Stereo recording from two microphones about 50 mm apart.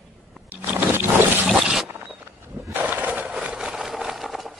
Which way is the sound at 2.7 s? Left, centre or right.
Right.